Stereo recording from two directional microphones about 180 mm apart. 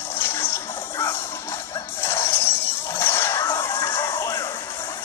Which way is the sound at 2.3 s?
10° left (ahead or behind).